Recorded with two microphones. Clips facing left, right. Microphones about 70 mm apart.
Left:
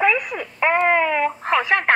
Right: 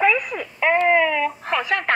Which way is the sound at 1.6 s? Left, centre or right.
Left.